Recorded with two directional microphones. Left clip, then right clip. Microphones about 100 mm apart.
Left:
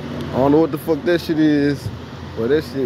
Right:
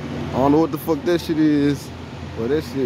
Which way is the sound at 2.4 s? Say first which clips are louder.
Left 4 dB; 15° left (ahead or behind).